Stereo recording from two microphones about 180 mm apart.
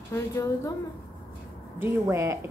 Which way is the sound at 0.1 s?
15° left (ahead or behind).